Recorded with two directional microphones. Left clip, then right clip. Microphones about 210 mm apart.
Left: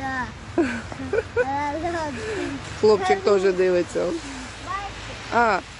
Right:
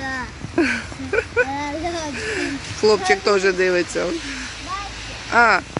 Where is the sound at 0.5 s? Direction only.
Centre (ahead or behind).